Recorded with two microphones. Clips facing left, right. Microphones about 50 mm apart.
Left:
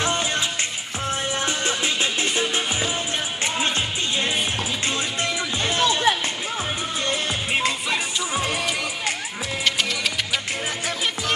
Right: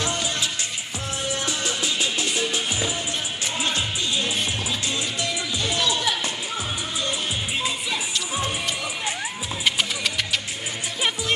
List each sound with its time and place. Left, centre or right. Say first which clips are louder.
0.0 s music: left 3 dB; left
2.3 s music: left 2 dB; left
5.2 s music: left 2 dB; left
7.1 s music: left 5 dB; left